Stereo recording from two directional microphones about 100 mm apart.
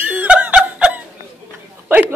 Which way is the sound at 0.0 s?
10° right (ahead or behind).